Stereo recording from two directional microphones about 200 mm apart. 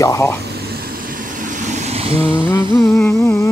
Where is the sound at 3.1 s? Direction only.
15° left (ahead or behind).